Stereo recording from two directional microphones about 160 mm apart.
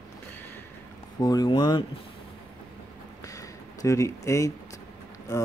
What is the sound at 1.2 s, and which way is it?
Mantra, 25° left (ahead or behind).